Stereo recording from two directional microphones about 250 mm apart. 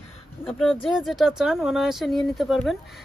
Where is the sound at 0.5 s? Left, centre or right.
Centre.